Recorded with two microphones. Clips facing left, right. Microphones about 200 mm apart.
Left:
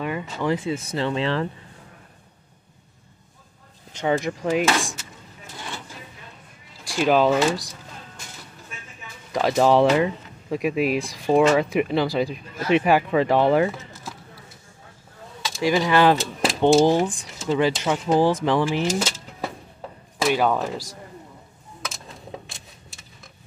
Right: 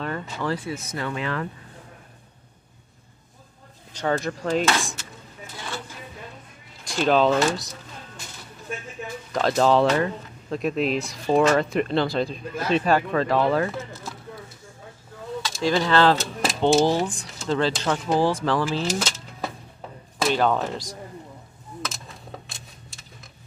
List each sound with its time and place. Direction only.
0.0 s speech: 15° left (ahead or behind)
0.7 s speech: 25° left (ahead or behind)
4.0 s speech: 15° left (ahead or behind)
6.9 s speech: 10° left (ahead or behind)
9.3 s speech: 15° left (ahead or behind)
15.6 s speech: 15° left (ahead or behind)
20.2 s speech: 10° left (ahead or behind)